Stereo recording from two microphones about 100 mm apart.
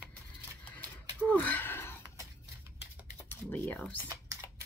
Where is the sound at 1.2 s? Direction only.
15° left (ahead or behind).